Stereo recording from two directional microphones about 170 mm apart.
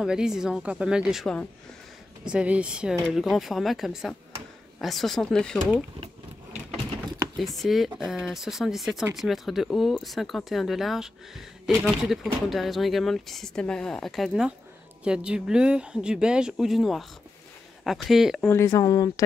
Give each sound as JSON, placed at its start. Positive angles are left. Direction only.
{"t": 0.0, "sound": "speech", "side_deg": -5}
{"t": 2.2, "sound": "speech", "side_deg": -5}
{"t": 7.3, "sound": "speech", "side_deg": 0}
{"t": 18.5, "sound": "speech", "side_deg": 15}